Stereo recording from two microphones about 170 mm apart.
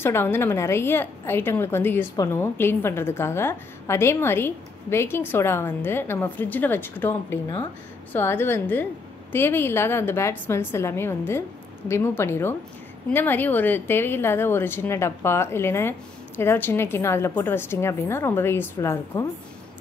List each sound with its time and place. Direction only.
0.0 s a woman's voice: 15° left (ahead or behind)